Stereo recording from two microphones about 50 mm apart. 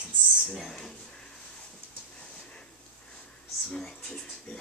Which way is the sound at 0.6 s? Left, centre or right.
Centre.